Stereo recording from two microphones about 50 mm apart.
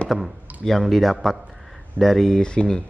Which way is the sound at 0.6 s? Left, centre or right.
Centre.